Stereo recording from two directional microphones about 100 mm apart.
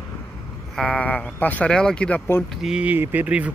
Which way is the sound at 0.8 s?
15° left (ahead or behind).